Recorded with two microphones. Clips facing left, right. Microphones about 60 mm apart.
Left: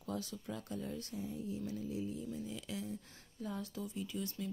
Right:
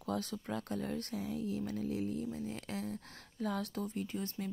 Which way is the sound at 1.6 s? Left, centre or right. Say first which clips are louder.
Right 4 dB; right.